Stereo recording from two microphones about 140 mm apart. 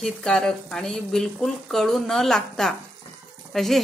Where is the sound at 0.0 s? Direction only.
5° left (ahead or behind).